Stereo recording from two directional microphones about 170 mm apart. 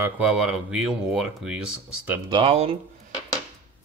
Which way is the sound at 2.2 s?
30° right (ahead or behind).